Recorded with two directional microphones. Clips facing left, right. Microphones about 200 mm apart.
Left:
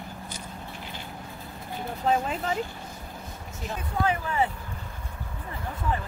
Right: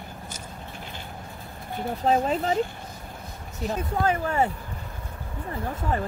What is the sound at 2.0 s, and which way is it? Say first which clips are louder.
Speech: right 3 dB; 35° right (ahead or behind).